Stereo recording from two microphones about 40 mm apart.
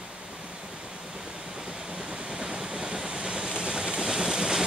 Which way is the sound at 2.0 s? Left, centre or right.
Right.